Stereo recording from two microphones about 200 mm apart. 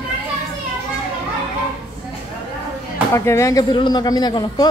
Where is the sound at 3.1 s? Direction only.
15° left (ahead or behind).